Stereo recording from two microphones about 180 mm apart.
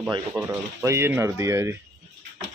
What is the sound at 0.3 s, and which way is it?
Speech, 10° right (ahead or behind).